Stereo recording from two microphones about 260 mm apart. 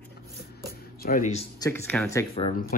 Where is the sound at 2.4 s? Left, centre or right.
Left.